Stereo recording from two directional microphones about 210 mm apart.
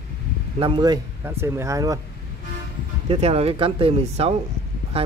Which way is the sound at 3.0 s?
25° right (ahead or behind).